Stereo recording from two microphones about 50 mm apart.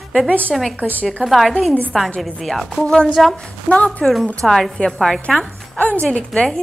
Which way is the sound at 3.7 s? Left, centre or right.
Left.